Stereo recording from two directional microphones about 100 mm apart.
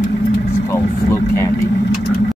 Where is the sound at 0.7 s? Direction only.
30° left (ahead or behind).